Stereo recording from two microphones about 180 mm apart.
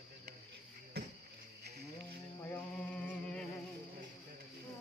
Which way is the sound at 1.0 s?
65° right (ahead or behind).